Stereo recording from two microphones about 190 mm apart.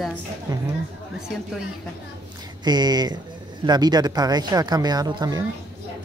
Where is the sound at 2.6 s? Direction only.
20° right (ahead or behind).